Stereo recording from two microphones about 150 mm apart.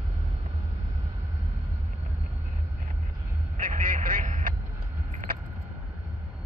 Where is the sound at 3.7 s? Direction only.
55° right (ahead or behind).